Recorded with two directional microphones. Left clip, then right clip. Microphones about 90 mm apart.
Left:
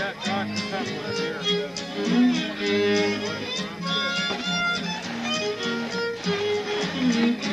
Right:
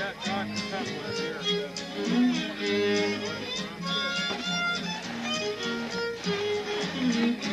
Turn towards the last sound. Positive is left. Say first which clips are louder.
# left 4 dB
turn(degrees=-35)  # may be behind; listen again after turning